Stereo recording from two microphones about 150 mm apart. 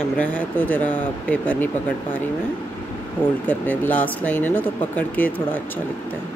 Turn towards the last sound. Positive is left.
turn(degrees=10)  # may be behind; listen again after turning